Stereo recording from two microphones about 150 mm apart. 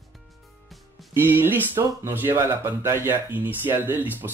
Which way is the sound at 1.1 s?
15° right (ahead or behind).